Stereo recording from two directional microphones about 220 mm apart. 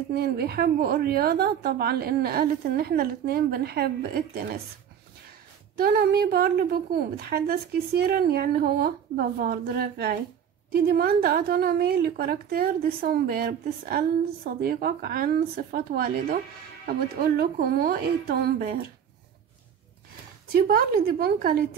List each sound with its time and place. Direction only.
0.1 s a woman's voice: 45° right (ahead or behind)
5.8 s a woman's voice: 45° right (ahead or behind)
20.5 s a woman's voice: 45° right (ahead or behind)